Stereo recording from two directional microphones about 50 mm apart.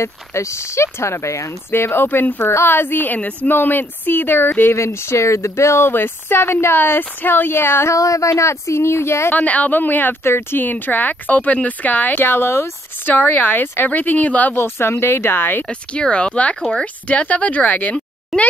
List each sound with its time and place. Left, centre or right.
0.0 s speech: left
1.7 s speech: left
2.4 s speech: left
4.7 s speech: left
7.9 s speech: left
9.3 s speech: left
10.2 s speech: left
12.3 s speech: left
13.1 s speech: left
14.5 s speech: left
15.9 s speech: left